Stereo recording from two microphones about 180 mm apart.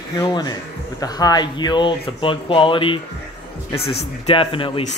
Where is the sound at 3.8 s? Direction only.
65° left (ahead or behind).